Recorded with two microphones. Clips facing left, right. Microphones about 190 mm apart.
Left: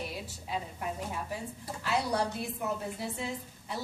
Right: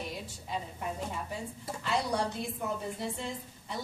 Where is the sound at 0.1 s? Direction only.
5° left (ahead or behind).